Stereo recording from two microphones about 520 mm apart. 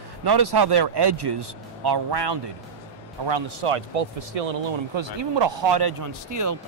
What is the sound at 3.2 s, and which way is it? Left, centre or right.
Speech, right.